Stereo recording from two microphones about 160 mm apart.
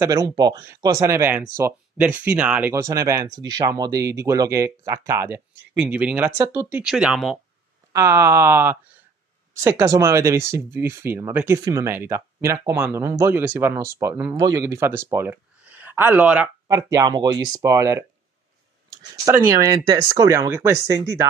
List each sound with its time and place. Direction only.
0.0 s speech: 20° right (ahead or behind)
2.7 s speech: 20° right (ahead or behind); by 7.3 s centre (ahead or behind)
7.9 s speech: 15° right (ahead or behind)
16.7 s speech: 20° right (ahead or behind)